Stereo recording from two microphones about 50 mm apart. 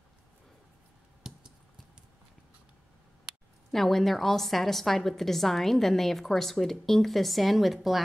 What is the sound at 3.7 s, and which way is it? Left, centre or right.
A woman's voice, centre.